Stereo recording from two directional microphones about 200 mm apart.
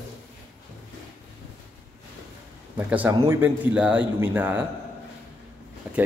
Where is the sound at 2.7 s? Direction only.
10° right (ahead or behind).